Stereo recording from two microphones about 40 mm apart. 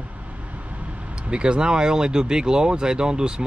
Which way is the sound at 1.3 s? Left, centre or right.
Right.